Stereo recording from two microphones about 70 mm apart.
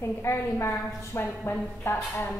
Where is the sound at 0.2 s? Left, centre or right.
Left.